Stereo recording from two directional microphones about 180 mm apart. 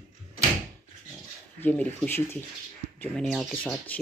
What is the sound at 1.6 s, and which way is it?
Speech, 10° left (ahead or behind).